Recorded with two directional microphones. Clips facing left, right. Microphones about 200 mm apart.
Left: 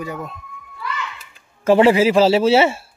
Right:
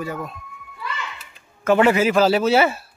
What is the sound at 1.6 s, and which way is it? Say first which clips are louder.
A man's voice: left 3 dB; 30° left (ahead or behind).